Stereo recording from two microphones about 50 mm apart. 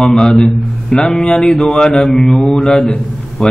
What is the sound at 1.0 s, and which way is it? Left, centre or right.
Mantra, centre.